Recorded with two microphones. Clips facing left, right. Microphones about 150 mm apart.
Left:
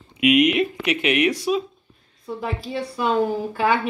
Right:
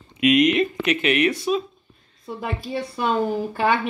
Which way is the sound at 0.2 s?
10° left (ahead or behind).